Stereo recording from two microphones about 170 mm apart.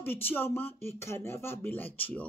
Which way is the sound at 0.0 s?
10° left (ahead or behind).